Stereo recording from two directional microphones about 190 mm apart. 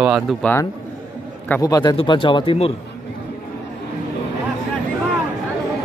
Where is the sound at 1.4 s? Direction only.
15° left (ahead or behind); by 2.7 s 30° left (ahead or behind).